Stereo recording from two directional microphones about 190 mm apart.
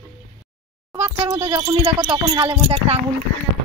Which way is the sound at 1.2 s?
30° right (ahead or behind).